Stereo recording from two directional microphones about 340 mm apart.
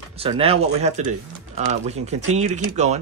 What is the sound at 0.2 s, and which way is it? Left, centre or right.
Speech, centre.